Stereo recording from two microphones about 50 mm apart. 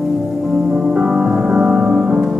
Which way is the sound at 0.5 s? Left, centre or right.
Centre.